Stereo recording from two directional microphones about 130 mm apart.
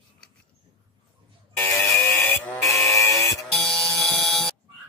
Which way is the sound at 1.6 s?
20° left (ahead or behind).